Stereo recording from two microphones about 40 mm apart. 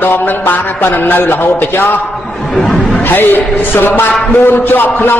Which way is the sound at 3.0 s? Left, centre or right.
Left.